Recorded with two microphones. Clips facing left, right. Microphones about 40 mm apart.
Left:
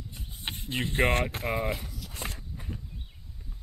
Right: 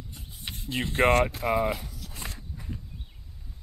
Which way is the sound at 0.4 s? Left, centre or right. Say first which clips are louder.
Left 1 dB; left.